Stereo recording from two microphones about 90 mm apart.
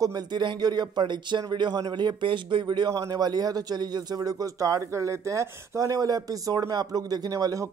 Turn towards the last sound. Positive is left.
turn(degrees=-40)  # may be behind; listen again after turning